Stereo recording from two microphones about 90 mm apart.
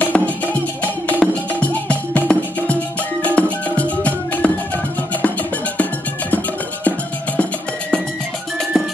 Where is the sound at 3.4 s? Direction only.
15° left (ahead or behind).